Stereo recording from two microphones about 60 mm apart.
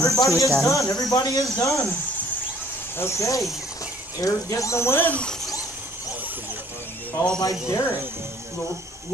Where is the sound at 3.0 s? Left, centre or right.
Left.